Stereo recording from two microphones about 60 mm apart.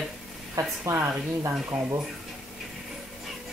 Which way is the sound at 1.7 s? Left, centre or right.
Centre.